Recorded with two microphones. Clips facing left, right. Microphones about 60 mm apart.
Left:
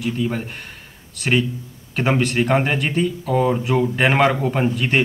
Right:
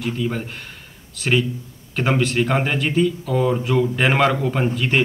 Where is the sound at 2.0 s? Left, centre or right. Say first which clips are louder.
Left 1 dB; centre.